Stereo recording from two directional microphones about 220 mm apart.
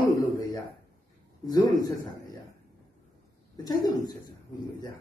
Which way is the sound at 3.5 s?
20° left (ahead or behind).